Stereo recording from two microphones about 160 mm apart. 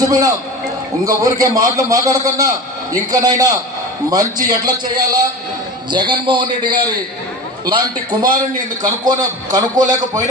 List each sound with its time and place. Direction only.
0.0 s a man's voice: 20° right (ahead or behind)